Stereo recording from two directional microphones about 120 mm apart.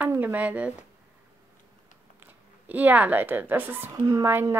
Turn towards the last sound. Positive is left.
turn(degrees=-20)  # may be behind; listen again after turning